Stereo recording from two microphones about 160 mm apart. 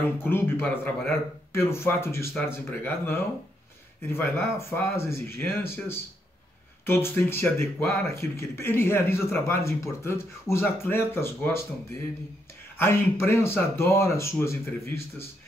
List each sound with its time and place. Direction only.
0.2 s speech: 15° left (ahead or behind)
12.7 s speech: 15° left (ahead or behind)